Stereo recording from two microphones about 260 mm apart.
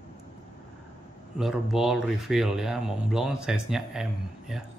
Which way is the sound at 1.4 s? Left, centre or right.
Centre.